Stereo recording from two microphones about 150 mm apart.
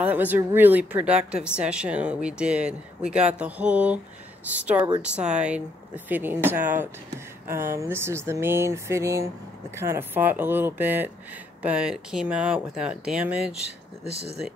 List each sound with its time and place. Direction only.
0.0 s a woman's voice: 10° right (ahead or behind)
5.0 s a woman's voice: 5° right (ahead or behind)